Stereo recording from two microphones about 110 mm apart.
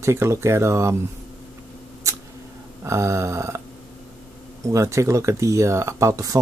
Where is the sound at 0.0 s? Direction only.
25° right (ahead or behind).